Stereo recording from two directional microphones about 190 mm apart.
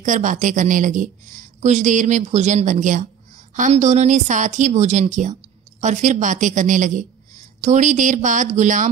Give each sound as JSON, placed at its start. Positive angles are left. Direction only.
{"t": 0.0, "sound": "speech", "side_deg": -40}